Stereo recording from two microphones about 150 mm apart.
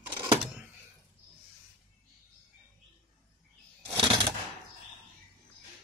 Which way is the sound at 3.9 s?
35° right (ahead or behind).